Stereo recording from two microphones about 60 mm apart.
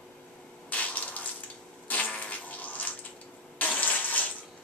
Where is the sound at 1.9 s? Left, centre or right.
Left.